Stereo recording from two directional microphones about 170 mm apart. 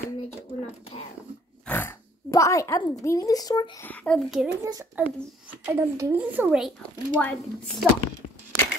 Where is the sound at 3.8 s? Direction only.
10° left (ahead or behind); by 6.7 s 5° right (ahead or behind).